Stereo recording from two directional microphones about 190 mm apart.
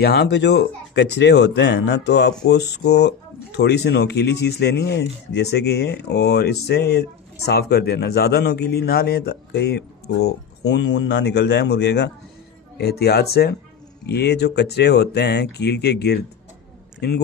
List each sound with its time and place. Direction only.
0.0 s speech: 60° left (ahead or behind)